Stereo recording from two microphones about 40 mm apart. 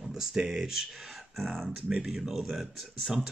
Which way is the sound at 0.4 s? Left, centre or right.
Centre.